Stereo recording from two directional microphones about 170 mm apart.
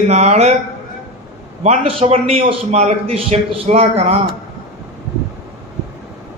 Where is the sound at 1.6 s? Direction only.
35° right (ahead or behind).